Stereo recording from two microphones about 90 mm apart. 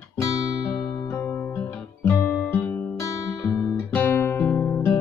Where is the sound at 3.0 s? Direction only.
35° left (ahead or behind).